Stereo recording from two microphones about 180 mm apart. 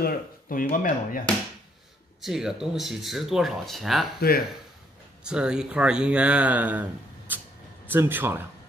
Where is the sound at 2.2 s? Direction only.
5° right (ahead or behind).